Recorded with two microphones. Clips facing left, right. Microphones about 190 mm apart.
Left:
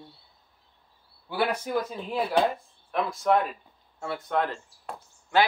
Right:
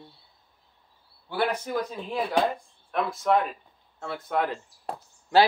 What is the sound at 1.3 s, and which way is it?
Speech, 10° left (ahead or behind).